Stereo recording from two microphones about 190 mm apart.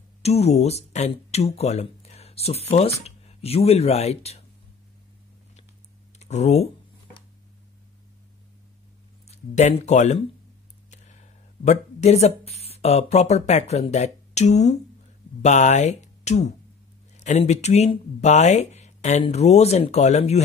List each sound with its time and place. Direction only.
0.2 s speech: 35° left (ahead or behind)
6.1 s speech: 35° left (ahead or behind)
9.3 s speech: 35° left (ahead or behind)
11.6 s speech: 35° left (ahead or behind)